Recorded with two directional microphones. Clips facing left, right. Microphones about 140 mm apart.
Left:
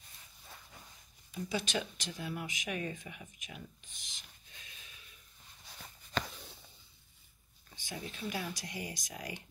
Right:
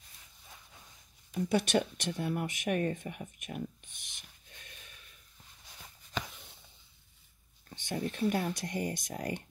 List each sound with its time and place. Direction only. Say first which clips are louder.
1.3 s speech: right 7 dB; 60° right (ahead or behind)
6.1 s a sound: left 2 dB; 5° right (ahead or behind)
7.7 s speech: right 8 dB; 60° right (ahead or behind)
9.1 s speech: right 7 dB; 45° right (ahead or behind)